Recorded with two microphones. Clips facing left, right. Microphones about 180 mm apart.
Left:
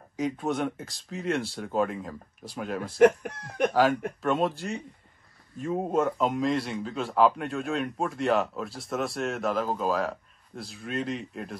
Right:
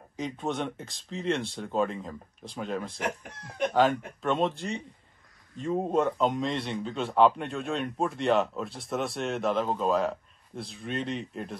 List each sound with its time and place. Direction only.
0.2 s speech: centre (ahead or behind)
3.0 s speech: 60° left (ahead or behind)
3.7 s speech: centre (ahead or behind)